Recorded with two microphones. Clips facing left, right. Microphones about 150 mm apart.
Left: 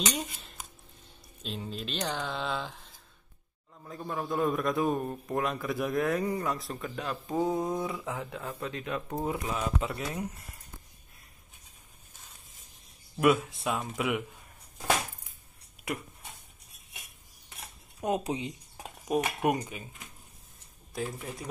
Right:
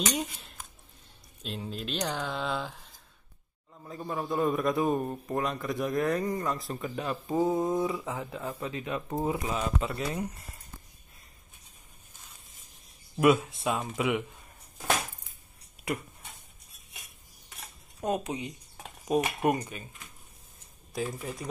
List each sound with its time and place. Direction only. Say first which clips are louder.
0.1 s a man's voice: right 3 dB; 5° right (ahead or behind)
13.2 s a man's voice: right 2 dB; centre (ahead or behind)
15.8 s a sound: right 2 dB; centre (ahead or behind)
18.2 s speech: left 2 dB; 25° left (ahead or behind)
19.0 s dishes: right 2 dB; centre (ahead or behind)
19.4 s speech: right 1 dB; 10° left (ahead or behind)
20.9 s a man's voice: right 2 dB; centre (ahead or behind)